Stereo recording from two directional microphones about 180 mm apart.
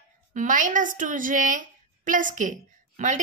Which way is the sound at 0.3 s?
45° right (ahead or behind).